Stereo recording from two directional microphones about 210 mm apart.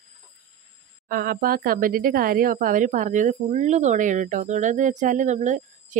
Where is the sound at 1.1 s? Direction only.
45° right (ahead or behind).